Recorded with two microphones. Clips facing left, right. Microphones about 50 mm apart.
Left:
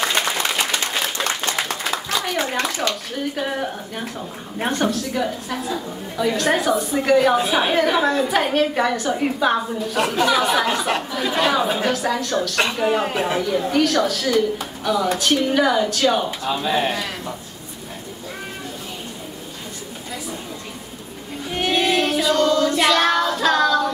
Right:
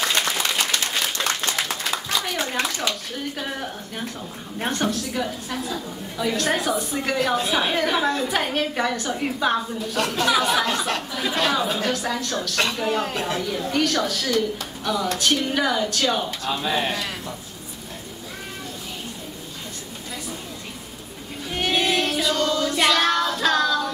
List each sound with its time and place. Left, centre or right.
0.0 s applause: centre
2.1 s clapping: centre
2.9 s a woman's voice: centre
11.9 s a woman's voice: centre
13.4 s speech: centre
21.5 s child singing: centre